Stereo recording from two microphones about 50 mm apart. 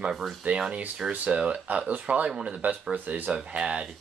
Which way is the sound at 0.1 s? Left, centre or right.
Centre.